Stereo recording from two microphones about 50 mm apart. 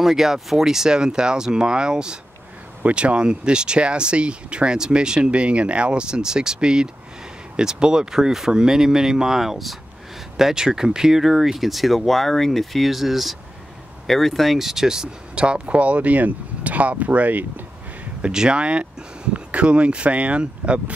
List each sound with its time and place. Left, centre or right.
0.0 s speech: centre
14.7 s speech: centre; by 17.6 s right
18.2 s speech: centre